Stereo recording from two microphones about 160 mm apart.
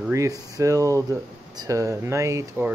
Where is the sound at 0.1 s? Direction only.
20° right (ahead or behind).